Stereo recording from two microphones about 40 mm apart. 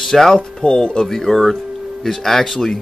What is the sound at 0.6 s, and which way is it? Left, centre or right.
Speech, centre.